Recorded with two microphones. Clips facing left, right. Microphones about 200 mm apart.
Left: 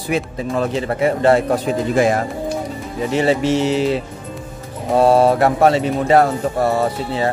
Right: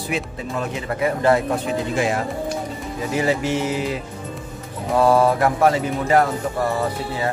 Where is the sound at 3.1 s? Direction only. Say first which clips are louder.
Left 5 dB; 30° left (ahead or behind).